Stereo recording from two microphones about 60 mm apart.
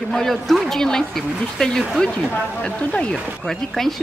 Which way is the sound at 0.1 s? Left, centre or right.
Centre.